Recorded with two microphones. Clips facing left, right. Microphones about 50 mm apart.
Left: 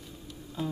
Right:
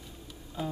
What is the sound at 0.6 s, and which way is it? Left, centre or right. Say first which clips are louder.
Music: left 1 dB; centre.